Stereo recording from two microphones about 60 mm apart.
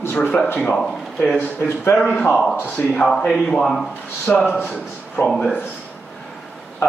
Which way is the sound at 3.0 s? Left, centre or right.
Centre.